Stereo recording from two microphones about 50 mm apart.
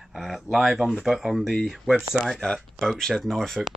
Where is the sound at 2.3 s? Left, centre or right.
Centre.